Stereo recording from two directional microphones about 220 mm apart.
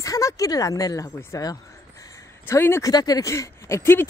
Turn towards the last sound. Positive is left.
turn(degrees=10)  # may be behind; listen again after turning